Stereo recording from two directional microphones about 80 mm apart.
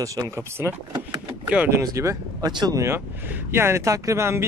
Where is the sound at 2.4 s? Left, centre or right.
Right.